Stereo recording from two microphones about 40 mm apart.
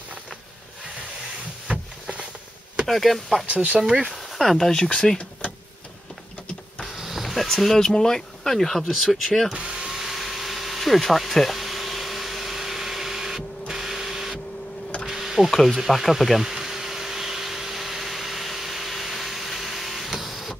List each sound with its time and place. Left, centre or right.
1.7 s a sound: right
2.9 s speech: centre
3.4 s speech: right
3.8 s speech: centre
4.4 s speech: centre
4.9 s speech: centre
7.0 s music: centre
7.6 s speech: centre
9.5 s a sound: centre
15.5 s speech: centre
15.9 s a sound: centre